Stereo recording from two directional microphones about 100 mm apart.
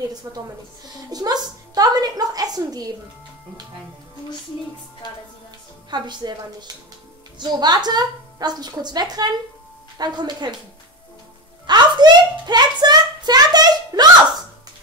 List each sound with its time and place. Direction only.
0.3 s a woman's voice: 35° right (ahead or behind)
5.9 s a woman's voice: 45° right (ahead or behind)
11.6 s a child's voice: 45° right (ahead or behind)